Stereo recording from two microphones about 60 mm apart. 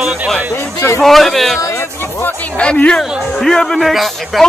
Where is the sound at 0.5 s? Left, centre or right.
Left.